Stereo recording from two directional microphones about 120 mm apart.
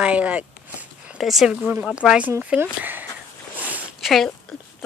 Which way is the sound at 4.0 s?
Centre (ahead or behind).